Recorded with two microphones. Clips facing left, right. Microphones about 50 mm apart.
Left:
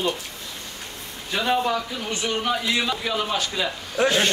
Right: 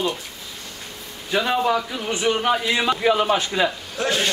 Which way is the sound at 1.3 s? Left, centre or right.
Centre.